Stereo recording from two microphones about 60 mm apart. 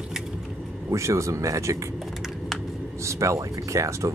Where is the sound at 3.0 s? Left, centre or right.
Right.